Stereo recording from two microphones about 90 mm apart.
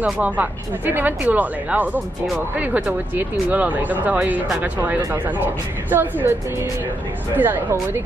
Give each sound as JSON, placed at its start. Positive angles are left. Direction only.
{"t": 0.0, "sound": "speech", "side_deg": -15}
{"t": 7.3, "sound": "speech", "side_deg": -20}